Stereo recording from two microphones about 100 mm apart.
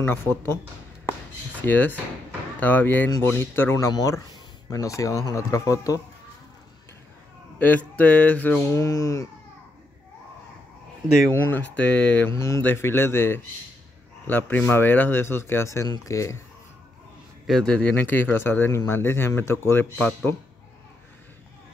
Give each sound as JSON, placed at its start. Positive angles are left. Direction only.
{"t": 0.0, "sound": "a man's voice", "side_deg": 20}
{"t": 1.6, "sound": "a man's voice", "side_deg": 20}
{"t": 3.7, "sound": "speech", "side_deg": 35}
{"t": 7.5, "sound": "speech", "side_deg": 15}
{"t": 8.7, "sound": "speech", "side_deg": 30}
{"t": 11.5, "sound": "speech", "side_deg": 15}
{"t": 12.3, "sound": "a man's voice", "side_deg": 30}
{"t": 17.5, "sound": "a man's voice", "side_deg": 5}